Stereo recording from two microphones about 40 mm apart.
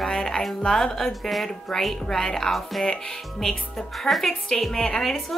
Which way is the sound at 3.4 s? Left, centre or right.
Centre.